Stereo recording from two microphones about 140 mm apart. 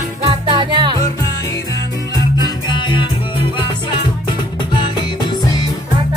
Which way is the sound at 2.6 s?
35° left (ahead or behind).